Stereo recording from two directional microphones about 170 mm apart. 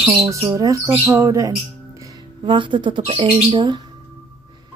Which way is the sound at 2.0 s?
30° right (ahead or behind).